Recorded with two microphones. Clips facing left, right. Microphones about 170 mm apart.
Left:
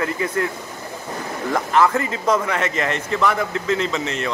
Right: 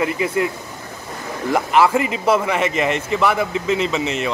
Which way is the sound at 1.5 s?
10° right (ahead or behind).